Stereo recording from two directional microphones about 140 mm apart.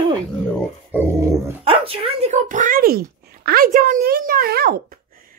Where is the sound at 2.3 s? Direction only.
65° right (ahead or behind).